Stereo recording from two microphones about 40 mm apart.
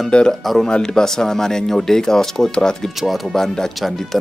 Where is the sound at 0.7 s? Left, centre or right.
Left.